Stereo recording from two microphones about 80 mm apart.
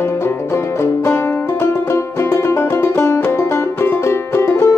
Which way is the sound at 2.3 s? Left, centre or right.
Left.